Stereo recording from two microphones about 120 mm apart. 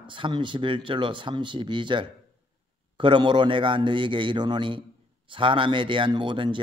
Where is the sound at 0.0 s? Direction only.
45° right (ahead or behind).